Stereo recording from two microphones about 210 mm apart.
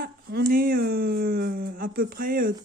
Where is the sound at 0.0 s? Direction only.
45° right (ahead or behind).